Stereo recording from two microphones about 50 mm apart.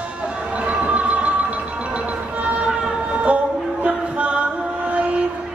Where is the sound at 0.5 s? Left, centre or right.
Right.